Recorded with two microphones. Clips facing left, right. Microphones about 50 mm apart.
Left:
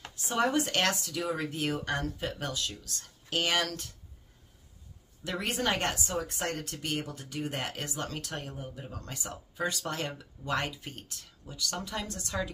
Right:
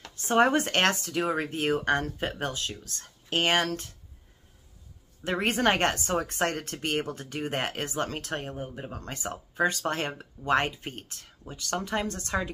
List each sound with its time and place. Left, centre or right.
0.1 s speech: right
5.2 s speech: right